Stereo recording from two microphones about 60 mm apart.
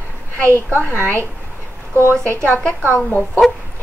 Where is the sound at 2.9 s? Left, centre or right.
Left.